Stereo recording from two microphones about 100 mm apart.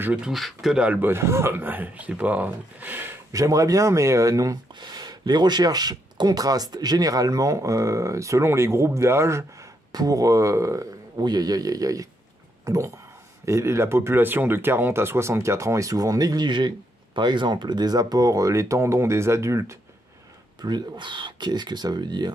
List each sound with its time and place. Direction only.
0.0 s speech: 15° right (ahead or behind)
0.3 s a man's voice: centre (ahead or behind); by 3.2 s 20° right (ahead or behind)
3.3 s speech: 35° right (ahead or behind)
9.9 s speech: 35° right (ahead or behind)
11.2 s speech: 40° right (ahead or behind)
20.6 s speech: 50° right (ahead or behind)